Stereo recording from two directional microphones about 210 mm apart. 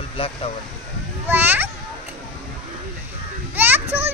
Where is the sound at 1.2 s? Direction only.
10° right (ahead or behind).